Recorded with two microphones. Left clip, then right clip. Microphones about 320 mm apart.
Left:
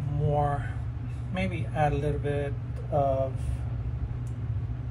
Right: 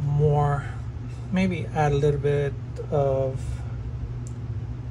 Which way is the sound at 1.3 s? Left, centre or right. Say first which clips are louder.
Right 5 dB; right.